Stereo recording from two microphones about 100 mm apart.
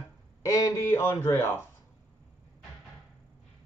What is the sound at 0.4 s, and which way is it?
A man's voice, 35° left (ahead or behind).